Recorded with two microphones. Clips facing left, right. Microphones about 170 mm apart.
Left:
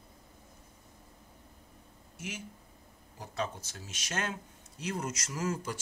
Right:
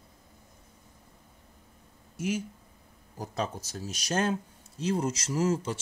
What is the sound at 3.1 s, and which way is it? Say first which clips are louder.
Speech: right 4 dB; 40° right (ahead or behind).